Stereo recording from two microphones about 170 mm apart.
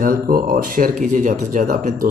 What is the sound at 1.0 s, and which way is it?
Speech, 45° right (ahead or behind).